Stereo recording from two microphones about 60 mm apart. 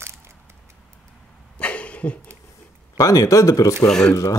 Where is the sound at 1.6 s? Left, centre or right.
Left.